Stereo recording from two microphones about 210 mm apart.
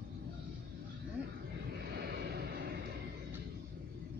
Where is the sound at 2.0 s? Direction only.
50° right (ahead or behind).